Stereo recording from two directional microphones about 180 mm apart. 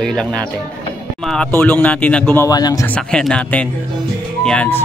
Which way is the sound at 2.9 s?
5° left (ahead or behind).